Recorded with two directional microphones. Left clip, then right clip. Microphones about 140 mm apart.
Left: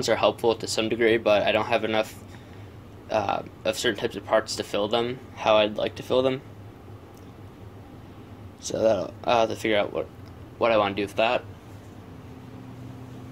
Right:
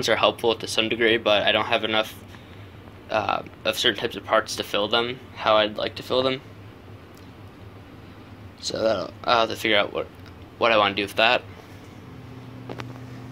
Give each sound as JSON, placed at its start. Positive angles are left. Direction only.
{"t": 0.0, "sound": "speech", "side_deg": 15}
{"t": 8.6, "sound": "speech", "side_deg": 35}